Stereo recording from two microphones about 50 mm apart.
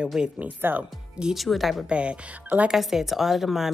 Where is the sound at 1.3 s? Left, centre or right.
Centre.